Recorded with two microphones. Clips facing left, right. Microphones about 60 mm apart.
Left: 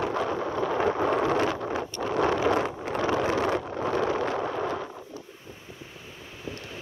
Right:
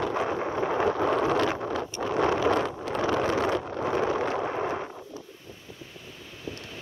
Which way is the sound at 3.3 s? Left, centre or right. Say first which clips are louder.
Even; left.